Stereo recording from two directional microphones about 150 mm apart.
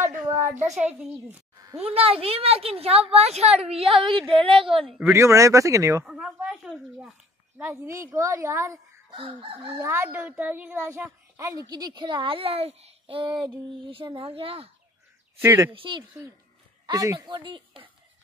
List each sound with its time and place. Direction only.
0.6 s a child's voice: 50° right (ahead or behind)
1.9 s a woman's voice: 40° right (ahead or behind)
5.1 s a woman's voice: 20° right (ahead or behind)
6.0 s a woman's voice: centre (ahead or behind); by 8.7 s 20° right (ahead or behind)
9.1 s a woman's voice: 35° right (ahead or behind)
9.8 s a woman's voice: 15° right (ahead or behind); by 14.7 s 40° right (ahead or behind)
15.4 s a woman's voice: 20° right (ahead or behind)
15.7 s a woman's voice: 35° right (ahead or behind)
16.8 s a woman's voice: 20° right (ahead or behind)